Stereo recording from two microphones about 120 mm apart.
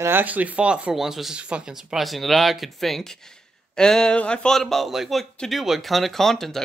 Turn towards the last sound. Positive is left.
turn(degrees=5)  # may be behind; listen again after turning